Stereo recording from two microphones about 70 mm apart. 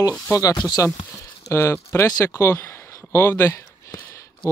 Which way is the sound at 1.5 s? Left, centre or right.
Left.